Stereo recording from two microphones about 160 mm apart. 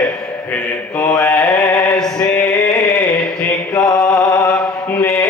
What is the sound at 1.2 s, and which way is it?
Mantra, centre (ahead or behind).